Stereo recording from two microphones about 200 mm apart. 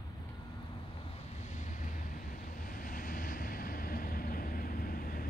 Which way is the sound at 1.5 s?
35° left (ahead or behind).